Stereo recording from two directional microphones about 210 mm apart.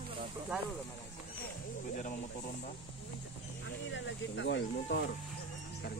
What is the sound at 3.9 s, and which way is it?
Speech, 60° left (ahead or behind).